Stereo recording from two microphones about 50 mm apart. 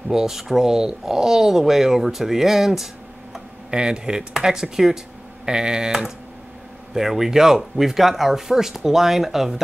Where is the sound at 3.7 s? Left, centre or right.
Centre.